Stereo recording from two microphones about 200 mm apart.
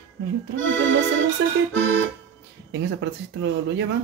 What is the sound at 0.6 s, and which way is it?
Accordion, 75° right (ahead or behind).